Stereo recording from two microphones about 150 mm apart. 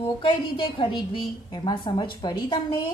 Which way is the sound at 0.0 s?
35° left (ahead or behind).